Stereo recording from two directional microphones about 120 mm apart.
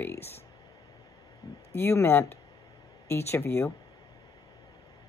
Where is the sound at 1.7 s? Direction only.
20° left (ahead or behind).